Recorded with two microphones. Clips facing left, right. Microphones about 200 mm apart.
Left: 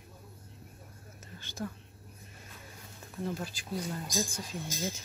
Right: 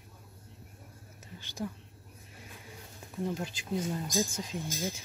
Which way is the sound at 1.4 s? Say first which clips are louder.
Right 1 dB; 15° right (ahead or behind).